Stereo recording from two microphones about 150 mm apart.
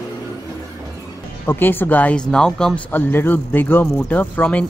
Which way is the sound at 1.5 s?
15° left (ahead or behind).